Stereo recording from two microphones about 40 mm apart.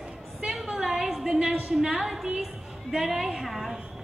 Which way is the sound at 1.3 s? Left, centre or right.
Centre.